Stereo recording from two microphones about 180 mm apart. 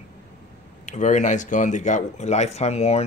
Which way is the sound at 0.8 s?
45° left (ahead or behind).